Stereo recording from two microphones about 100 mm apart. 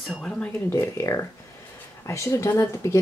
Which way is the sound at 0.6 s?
25° left (ahead or behind).